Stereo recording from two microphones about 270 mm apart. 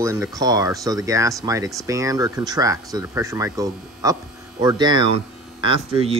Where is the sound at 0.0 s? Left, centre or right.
Centre.